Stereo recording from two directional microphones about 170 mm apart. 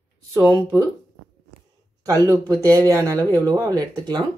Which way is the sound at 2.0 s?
20° right (ahead or behind).